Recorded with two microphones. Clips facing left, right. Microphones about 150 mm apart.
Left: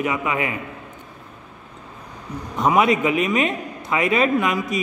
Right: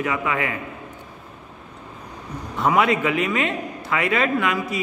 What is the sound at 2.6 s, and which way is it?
A man's voice, 20° left (ahead or behind).